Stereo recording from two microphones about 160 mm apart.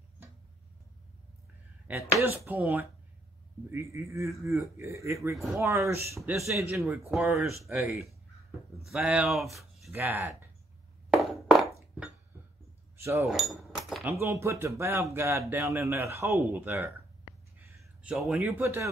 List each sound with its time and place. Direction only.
1.9 s speech: 15° right (ahead or behind)
7.1 s speech: 5° right (ahead or behind)
7.7 s speech: 15° right (ahead or behind)
9.8 s speech: 15° right (ahead or behind)
11.1 s a sound: centre (ahead or behind)
12.9 s a sound: 15° right (ahead or behind)
13.3 s cutlery: centre (ahead or behind)
14.0 s speech: 15° right (ahead or behind)
18.0 s speech: centre (ahead or behind)
18.6 s speech: 15° right (ahead or behind)